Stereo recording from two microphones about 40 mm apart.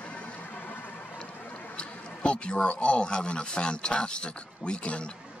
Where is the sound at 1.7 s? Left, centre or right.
Left.